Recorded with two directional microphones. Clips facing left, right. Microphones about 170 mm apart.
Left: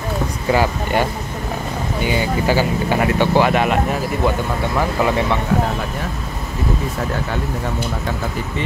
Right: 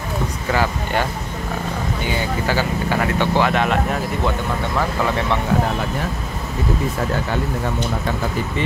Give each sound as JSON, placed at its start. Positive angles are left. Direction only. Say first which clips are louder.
{"t": 0.5, "sound": "speech", "louder": "left 4 dB", "side_deg": 15}
{"t": 2.4, "sound": "speech", "louder": "left 3 dB", "side_deg": 15}